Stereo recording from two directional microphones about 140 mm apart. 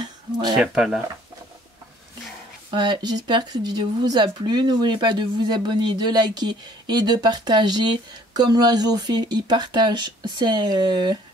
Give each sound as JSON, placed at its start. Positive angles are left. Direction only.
{"t": 0.0, "sound": "a sound", "side_deg": -30}
{"t": 0.6, "sound": "speech", "side_deg": 0}
{"t": 2.7, "sound": "speech", "side_deg": -30}